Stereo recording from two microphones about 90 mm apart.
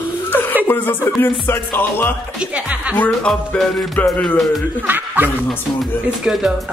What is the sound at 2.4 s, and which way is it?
Speech, 15° right (ahead or behind).